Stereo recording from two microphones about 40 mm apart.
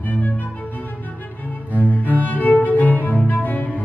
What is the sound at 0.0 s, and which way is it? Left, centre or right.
Music, left.